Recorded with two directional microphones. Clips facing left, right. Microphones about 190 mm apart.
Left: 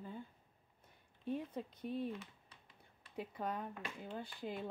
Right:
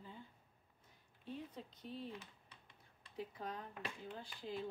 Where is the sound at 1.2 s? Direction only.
55° left (ahead or behind).